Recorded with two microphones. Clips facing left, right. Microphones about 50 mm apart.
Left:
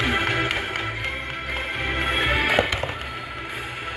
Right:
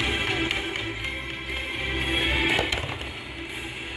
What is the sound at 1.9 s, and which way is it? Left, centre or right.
Music, left.